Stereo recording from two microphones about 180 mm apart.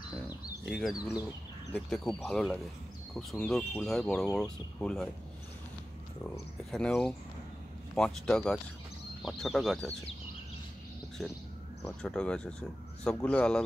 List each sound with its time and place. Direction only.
0.7 s speech: centre (ahead or behind)
0.9 s speech: 20° left (ahead or behind)
1.7 s speech: 5° left (ahead or behind)
6.7 s speech: 5° left (ahead or behind)
11.2 s speech: centre (ahead or behind)